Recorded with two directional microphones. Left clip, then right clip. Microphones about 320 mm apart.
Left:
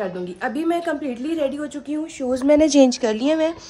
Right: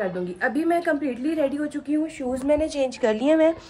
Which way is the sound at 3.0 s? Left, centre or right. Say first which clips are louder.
Even; centre.